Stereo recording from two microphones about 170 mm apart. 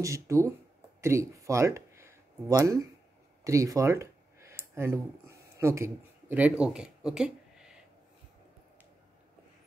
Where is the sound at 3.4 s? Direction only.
20° right (ahead or behind).